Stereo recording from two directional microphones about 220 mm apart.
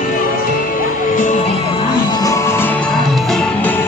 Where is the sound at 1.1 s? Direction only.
35° left (ahead or behind).